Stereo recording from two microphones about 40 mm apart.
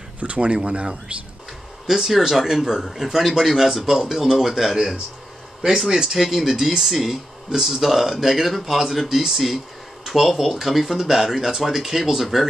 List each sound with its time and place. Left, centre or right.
0.2 s speech: right
1.9 s speech: centre
6.1 s speech: centre